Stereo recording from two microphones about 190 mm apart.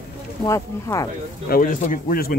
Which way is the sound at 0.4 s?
15° left (ahead or behind).